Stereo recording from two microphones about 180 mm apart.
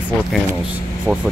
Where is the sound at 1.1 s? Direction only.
10° left (ahead or behind).